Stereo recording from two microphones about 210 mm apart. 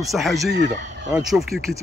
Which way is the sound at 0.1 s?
Centre (ahead or behind).